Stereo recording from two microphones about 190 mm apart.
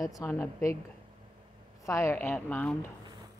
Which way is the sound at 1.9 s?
15° left (ahead or behind).